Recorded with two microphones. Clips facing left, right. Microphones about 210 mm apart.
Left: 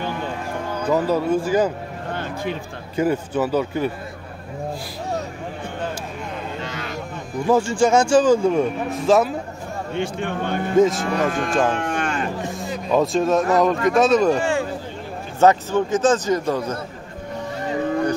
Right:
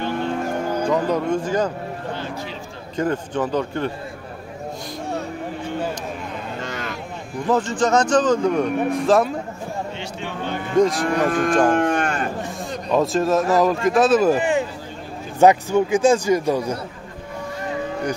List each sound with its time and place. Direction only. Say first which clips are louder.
0.8 s speech: left 3 dB; 5° left (ahead or behind)
3.0 s a man's voice: left 2 dB; 5° left (ahead or behind)
6.6 s vehicle: right 1 dB; 45° right (ahead or behind)
7.4 s a man's voice: left 2 dB; 10° left (ahead or behind)
9.9 s speech: left 6 dB; 55° left (ahead or behind)
10.8 s speech: even; centre (ahead or behind)
11.3 s cattle: right 4 dB; 50° right (ahead or behind)
12.4 s speech: left 1 dB; centre (ahead or behind)
14.4 s speech: right 1 dB; 20° right (ahead or behind)